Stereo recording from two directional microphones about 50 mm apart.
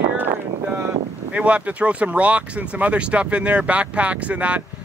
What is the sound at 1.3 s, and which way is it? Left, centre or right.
Speech, right.